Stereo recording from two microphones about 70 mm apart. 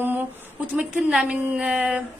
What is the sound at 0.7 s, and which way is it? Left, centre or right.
A woman's voice, centre.